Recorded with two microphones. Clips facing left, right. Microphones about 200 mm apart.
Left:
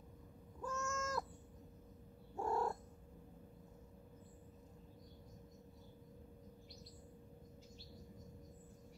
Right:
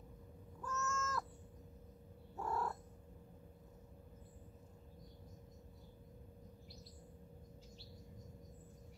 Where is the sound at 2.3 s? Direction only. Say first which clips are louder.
Left 3 dB; 25° left (ahead or behind).